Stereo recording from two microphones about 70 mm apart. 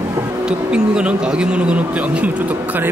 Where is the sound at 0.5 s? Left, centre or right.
Centre.